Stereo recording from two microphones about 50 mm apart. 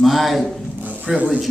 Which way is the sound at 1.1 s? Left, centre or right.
Right.